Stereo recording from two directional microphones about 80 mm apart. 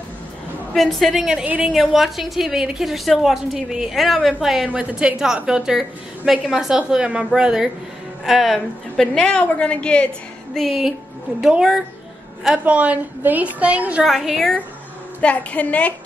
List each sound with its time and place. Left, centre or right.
0.7 s a woman's voice: centre
1.4 s a woman's voice: centre
1.7 s a woman's voice: centre
10.5 s a woman's voice: centre
12.6 s a woman's voice: centre
14.0 s a woman's voice: centre
15.1 s a woman's voice: centre